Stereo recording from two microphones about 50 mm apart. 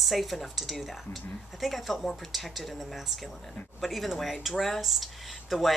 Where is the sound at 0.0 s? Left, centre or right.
Centre.